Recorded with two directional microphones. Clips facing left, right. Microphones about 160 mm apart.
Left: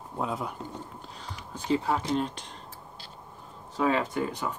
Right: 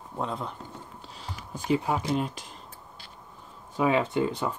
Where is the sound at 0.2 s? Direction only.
5° left (ahead or behind).